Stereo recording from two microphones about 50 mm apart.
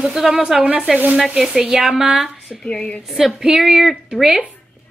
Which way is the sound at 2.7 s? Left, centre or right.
Centre.